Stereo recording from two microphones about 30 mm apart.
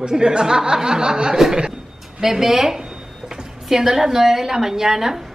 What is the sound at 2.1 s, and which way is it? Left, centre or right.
A man's voice, centre.